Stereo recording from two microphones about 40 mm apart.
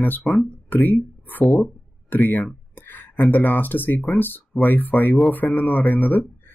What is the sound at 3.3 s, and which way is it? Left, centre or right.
Speech, left.